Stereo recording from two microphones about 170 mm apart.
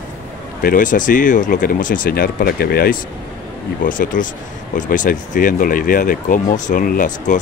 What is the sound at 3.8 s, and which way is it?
Speech, 50° left (ahead or behind).